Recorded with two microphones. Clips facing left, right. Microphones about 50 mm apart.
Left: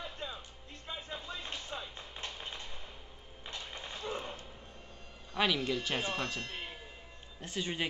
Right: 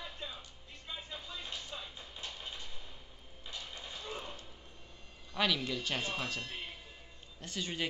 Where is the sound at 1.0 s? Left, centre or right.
Left.